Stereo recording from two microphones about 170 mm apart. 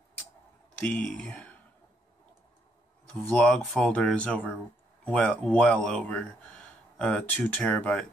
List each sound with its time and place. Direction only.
0.8 s speech: 5° left (ahead or behind)
3.3 s speech: 5° left (ahead or behind)